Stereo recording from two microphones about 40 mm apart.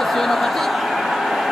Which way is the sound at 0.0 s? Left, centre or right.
Centre.